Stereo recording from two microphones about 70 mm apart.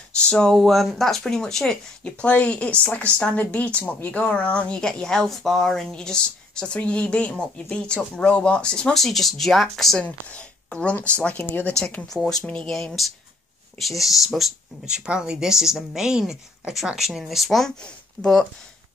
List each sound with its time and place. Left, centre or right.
0.2 s speech: centre
0.6 s speech: centre
10.2 s speech: centre
12.1 s speech: centre
13.7 s speech: centre
15.0 s a woman's voice: centre